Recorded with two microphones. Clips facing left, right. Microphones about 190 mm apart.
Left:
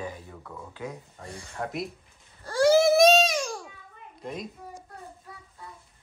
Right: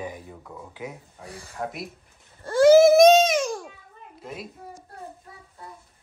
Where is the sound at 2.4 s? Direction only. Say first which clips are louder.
Right 6 dB; 25° right (ahead or behind).